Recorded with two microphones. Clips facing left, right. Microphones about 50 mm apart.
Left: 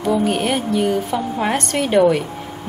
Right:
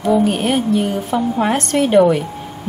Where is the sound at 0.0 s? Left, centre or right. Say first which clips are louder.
Right 3 dB; centre.